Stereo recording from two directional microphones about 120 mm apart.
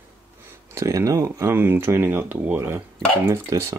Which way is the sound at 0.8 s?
25° right (ahead or behind).